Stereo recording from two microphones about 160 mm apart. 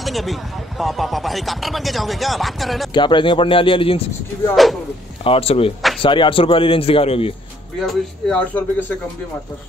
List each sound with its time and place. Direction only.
0.0 s speech: centre (ahead or behind)
2.9 s speech: 30° left (ahead or behind)
5.2 s speech: 35° left (ahead or behind)
7.8 s a man's voice: 5° left (ahead or behind)